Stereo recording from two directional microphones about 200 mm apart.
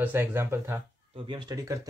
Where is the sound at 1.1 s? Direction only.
25° right (ahead or behind).